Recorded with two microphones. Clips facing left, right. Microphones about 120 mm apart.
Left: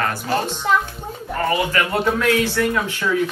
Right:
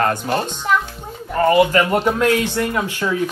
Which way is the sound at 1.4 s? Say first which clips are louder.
Right 7 dB; 25° right (ahead or behind).